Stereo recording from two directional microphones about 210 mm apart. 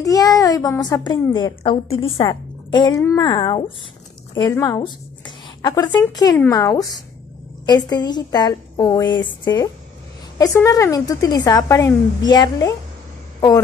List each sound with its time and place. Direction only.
0.0 s a woman's voice: 15° left (ahead or behind)